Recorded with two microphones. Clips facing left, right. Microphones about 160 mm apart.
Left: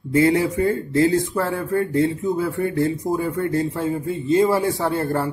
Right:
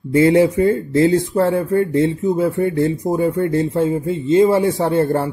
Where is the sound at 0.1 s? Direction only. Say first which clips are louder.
Right 5 dB; 25° right (ahead or behind).